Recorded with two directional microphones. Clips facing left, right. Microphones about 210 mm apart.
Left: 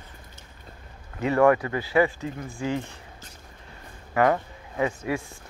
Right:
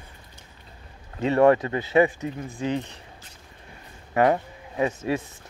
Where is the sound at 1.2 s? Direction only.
25° right (ahead or behind).